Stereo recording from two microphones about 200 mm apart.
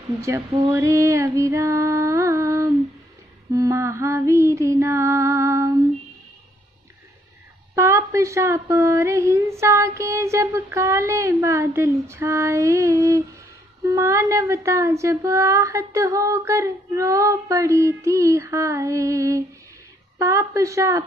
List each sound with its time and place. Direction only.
0.2 s speech: 15° right (ahead or behind)
7.7 s speech: 15° right (ahead or behind)